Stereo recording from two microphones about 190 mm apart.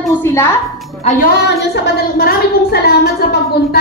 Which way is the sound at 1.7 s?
55° left (ahead or behind).